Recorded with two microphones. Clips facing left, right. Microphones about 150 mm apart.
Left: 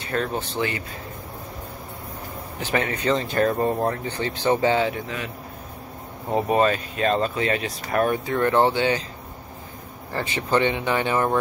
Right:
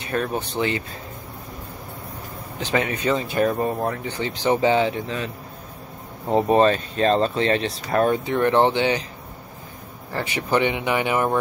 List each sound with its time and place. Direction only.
0.1 s speech: 15° right (ahead or behind)
2.6 s speech: 20° right (ahead or behind)
3.5 s speech: centre (ahead or behind)
4.0 s speech: 15° right (ahead or behind)
6.3 s speech: 30° right (ahead or behind)
10.2 s speech: 15° right (ahead or behind)